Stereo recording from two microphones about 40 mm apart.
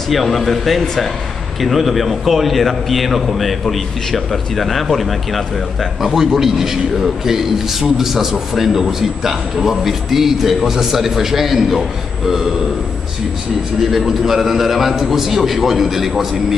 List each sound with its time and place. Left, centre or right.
0.1 s a man's voice: centre
6.1 s a man's voice: centre
13.7 s a man's voice: centre